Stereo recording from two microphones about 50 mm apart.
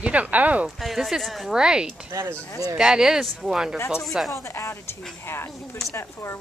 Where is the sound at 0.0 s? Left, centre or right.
Right.